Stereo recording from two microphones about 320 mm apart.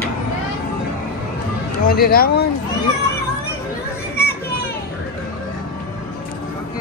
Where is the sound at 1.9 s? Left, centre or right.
Left.